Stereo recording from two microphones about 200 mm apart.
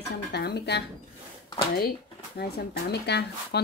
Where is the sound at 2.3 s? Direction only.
55° left (ahead or behind).